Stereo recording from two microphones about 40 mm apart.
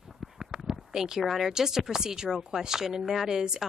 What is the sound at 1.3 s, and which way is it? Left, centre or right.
Speech, centre.